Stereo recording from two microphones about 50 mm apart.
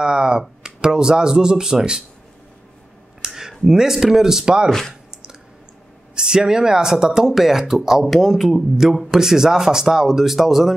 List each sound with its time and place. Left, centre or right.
0.0 s a sound: centre
0.4 s speech: centre
3.2 s speech: centre
4.6 s speech: centre
6.1 s speech: centre